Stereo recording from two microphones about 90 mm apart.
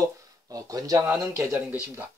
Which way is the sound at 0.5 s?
40° right (ahead or behind).